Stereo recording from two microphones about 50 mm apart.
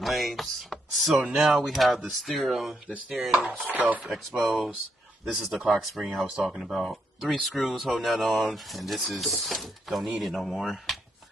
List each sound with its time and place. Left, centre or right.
0.0 s speech: centre
3.3 s chopping: centre
3.7 s speech: right
4.0 s chopping: centre
5.2 s speech: centre